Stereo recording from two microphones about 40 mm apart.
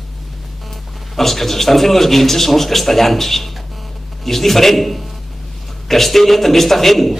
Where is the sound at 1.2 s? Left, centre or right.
Centre.